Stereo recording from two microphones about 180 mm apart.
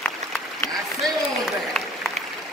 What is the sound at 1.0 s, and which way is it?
Applause, centre (ahead or behind).